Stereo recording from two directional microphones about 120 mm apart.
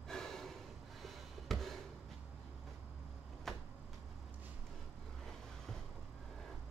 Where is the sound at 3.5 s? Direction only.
Centre (ahead or behind).